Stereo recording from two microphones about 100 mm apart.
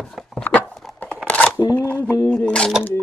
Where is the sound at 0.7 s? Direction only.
Centre (ahead or behind).